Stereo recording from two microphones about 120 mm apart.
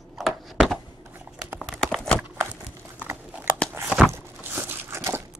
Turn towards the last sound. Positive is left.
turn(degrees=-20)  # may be behind; listen again after turning